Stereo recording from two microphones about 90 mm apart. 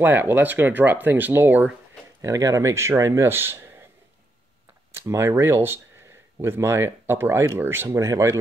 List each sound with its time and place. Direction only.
0.0 s speech: 20° right (ahead or behind)
2.2 s speech: 35° right (ahead or behind)
4.9 s speech: 30° right (ahead or behind)